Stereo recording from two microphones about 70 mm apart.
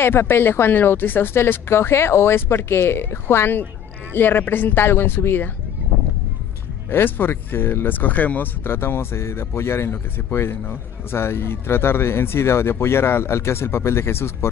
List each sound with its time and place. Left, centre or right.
0.0 s speech: left
6.9 s speech: left